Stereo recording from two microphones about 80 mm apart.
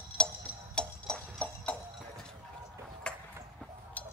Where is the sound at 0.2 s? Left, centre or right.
Centre.